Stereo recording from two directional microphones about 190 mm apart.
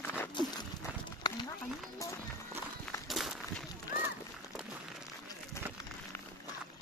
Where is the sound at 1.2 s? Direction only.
20° left (ahead or behind).